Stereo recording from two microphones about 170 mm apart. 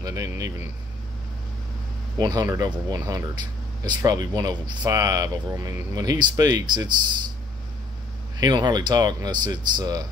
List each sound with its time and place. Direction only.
0.0 s speech: 20° right (ahead or behind)
2.1 s speech: 20° right (ahead or behind)
8.4 s speech: 25° right (ahead or behind)